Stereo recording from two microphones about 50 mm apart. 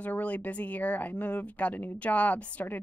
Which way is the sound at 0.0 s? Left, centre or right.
Left.